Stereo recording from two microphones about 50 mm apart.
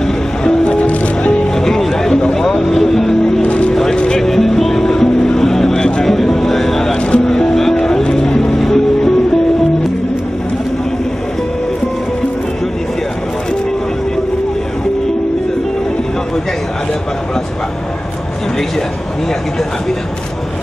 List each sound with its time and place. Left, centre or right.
0.0 s music: centre
0.7 s music: left
1.6 s music: centre
3.4 s music: left
4.2 s music: centre